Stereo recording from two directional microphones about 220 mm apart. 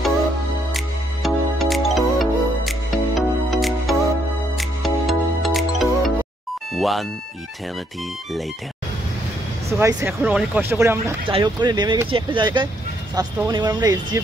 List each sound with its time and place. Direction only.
0.7 s music: centre (ahead or behind)
9.7 s speech: 15° right (ahead or behind)